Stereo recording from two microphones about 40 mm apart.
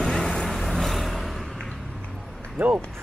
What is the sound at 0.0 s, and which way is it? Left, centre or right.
Vehicle, centre.